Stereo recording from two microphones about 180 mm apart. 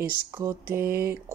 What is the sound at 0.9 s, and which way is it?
Speech, 55° right (ahead or behind).